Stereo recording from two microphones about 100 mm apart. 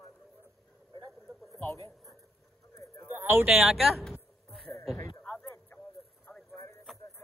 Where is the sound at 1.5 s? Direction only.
35° left (ahead or behind).